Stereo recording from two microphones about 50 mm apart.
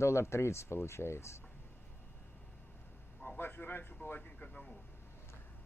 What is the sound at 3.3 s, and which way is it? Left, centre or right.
Speech, left.